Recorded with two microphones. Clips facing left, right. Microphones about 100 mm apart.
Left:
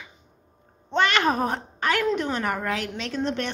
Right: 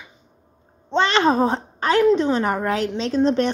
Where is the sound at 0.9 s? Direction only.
30° right (ahead or behind).